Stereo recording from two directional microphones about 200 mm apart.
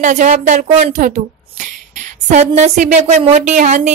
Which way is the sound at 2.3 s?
35° right (ahead or behind).